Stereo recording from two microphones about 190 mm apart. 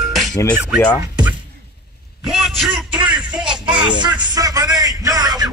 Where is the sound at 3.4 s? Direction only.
25° right (ahead or behind).